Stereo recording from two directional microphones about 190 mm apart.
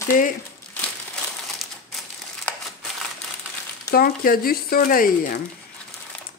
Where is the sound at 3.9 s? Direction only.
50° left (ahead or behind).